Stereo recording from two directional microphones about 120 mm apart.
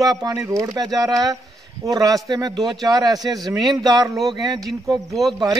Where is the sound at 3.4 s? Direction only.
Centre (ahead or behind).